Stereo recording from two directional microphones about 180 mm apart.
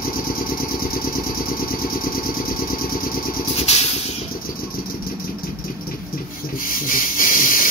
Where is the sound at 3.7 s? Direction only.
35° left (ahead or behind).